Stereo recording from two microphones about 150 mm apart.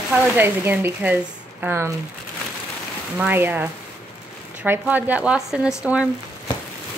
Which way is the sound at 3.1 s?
15° right (ahead or behind).